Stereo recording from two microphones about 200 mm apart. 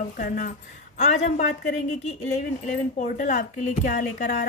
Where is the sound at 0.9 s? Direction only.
35° left (ahead or behind).